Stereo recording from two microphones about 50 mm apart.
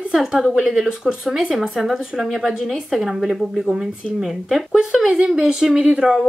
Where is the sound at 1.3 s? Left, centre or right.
Centre.